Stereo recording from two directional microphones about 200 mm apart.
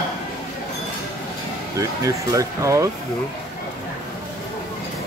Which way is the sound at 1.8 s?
15° right (ahead or behind).